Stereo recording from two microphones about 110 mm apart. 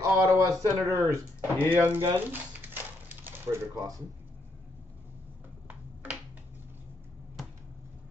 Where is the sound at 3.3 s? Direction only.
20° right (ahead or behind).